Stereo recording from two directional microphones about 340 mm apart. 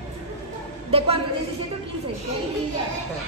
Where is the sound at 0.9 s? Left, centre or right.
Centre.